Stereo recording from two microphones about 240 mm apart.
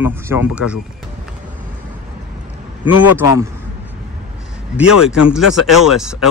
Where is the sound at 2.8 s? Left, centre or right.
Left.